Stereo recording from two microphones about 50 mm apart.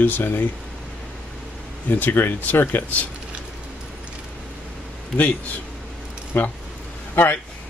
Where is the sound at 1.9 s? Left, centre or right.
Left.